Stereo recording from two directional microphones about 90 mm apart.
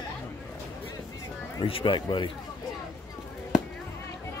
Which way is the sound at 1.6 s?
80° left.